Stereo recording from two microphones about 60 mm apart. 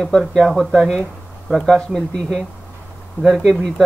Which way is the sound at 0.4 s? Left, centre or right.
Centre.